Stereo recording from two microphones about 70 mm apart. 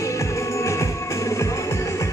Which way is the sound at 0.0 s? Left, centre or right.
Left.